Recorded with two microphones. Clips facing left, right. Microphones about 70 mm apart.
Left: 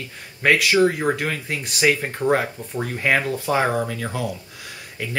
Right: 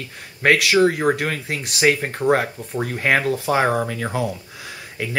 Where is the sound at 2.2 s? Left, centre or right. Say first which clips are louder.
Right 2 dB; centre.